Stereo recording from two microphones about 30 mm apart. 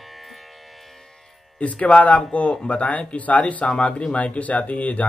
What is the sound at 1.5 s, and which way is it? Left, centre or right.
Speech, left.